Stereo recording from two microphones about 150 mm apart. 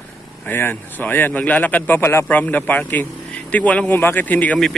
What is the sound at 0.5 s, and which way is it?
Speech, 15° left (ahead or behind).